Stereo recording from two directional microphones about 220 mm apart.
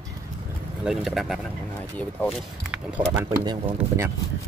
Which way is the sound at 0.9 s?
Centre (ahead or behind).